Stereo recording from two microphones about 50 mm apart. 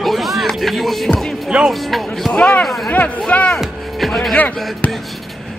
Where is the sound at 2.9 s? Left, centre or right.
Left.